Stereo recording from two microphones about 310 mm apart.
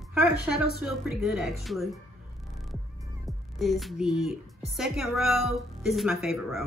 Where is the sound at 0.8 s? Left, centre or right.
Centre.